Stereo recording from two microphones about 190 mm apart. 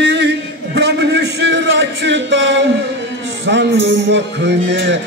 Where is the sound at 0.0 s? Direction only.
65° right (ahead or behind).